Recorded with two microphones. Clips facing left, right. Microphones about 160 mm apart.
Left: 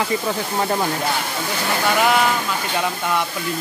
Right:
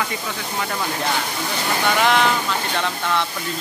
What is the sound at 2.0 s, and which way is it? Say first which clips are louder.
Speech: even; 5° left (ahead or behind).